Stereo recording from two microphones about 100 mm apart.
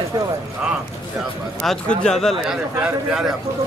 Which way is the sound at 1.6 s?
10° left (ahead or behind).